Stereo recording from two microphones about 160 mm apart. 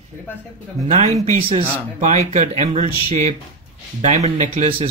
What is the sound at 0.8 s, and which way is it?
Speech, 50° right (ahead or behind).